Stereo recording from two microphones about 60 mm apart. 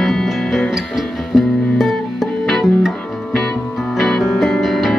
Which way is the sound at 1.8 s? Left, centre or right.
Centre.